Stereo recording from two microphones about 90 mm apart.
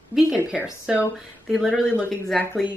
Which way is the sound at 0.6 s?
15° right (ahead or behind).